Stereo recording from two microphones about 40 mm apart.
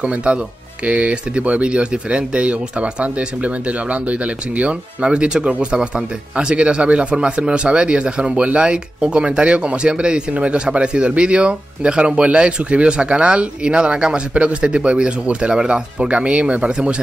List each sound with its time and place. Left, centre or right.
0.0 s speech: right